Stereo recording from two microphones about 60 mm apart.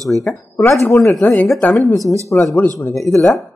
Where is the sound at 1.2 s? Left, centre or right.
Left.